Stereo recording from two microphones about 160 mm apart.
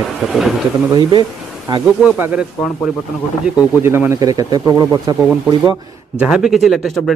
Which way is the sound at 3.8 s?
15° right (ahead or behind).